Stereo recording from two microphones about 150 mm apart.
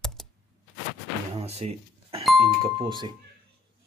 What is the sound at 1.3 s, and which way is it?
Speech, 45° right (ahead or behind).